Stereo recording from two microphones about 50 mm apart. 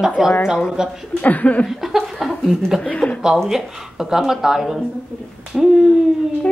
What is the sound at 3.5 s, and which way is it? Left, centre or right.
Speech, centre.